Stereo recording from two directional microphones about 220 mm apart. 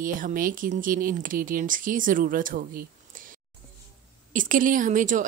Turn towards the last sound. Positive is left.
turn(degrees=-35)  # may be behind; listen again after turning